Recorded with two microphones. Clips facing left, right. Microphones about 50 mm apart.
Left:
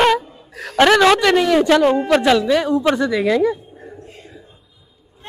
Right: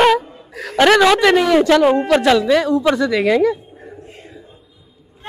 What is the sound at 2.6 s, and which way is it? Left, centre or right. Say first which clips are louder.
Speech: right 1 dB; centre.